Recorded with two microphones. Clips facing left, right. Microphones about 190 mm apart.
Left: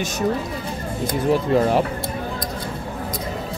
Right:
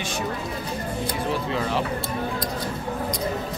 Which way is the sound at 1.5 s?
45° left (ahead or behind).